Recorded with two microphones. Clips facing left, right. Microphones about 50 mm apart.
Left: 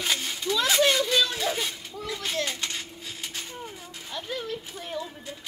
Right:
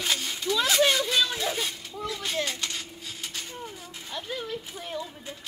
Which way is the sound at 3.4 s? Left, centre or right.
Centre.